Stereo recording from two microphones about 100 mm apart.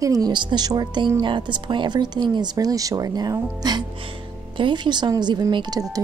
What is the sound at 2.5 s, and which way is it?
Speech, 35° right (ahead or behind).